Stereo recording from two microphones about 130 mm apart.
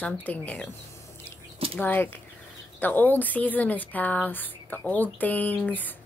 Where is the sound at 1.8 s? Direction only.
15° left (ahead or behind).